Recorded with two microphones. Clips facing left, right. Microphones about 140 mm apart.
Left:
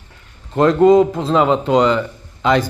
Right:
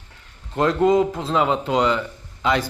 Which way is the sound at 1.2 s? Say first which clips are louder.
Left 6 dB; 80° left.